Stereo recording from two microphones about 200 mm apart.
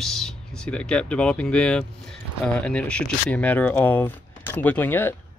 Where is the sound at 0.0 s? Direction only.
Centre (ahead or behind).